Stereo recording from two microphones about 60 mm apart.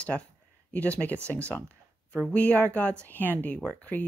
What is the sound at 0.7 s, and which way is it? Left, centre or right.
Speech, left.